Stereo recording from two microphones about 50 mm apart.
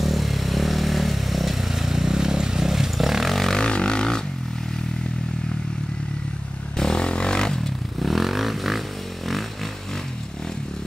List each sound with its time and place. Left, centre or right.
0.0 s vehicle: centre
3.3 s vehicle: centre
3.6 s vehicle: centre
6.8 s music: centre
8.0 s a sound: centre